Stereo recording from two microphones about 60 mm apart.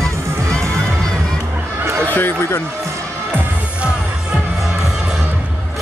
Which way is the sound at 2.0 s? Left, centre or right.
Left.